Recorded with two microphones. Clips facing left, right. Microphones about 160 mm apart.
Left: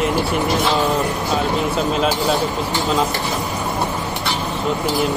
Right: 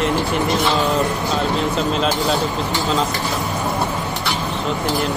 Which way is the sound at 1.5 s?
5° left (ahead or behind).